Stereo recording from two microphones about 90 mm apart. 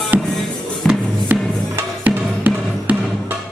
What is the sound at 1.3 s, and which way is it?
Music, 20° right (ahead or behind).